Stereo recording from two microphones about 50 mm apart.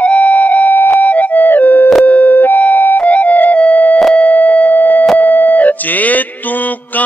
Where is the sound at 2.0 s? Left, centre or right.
Left.